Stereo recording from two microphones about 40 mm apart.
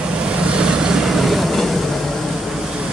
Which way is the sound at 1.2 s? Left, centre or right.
Centre.